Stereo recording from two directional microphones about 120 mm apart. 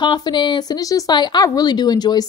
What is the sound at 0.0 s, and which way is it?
A woman's voice, 40° left (ahead or behind).